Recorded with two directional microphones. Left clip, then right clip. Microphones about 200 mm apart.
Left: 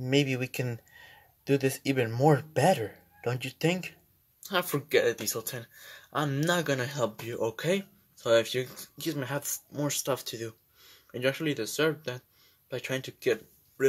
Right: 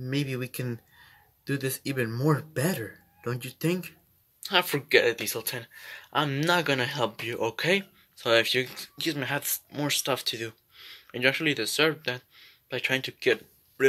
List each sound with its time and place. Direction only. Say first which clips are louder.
1.4 s speech: left 4 dB; 30° left (ahead or behind)
4.4 s speech: right 5 dB; 10° left (ahead or behind)